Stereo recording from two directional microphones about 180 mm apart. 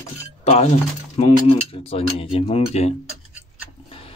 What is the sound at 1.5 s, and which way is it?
Speech, 30° left (ahead or behind).